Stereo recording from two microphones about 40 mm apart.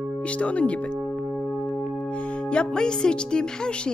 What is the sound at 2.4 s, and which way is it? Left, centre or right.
A woman's voice, left.